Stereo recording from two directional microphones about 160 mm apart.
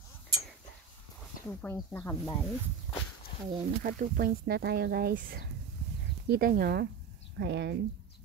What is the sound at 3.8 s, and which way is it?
Speech, 60° right (ahead or behind).